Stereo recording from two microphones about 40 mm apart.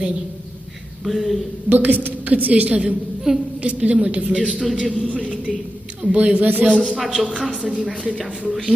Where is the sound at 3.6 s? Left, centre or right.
Right.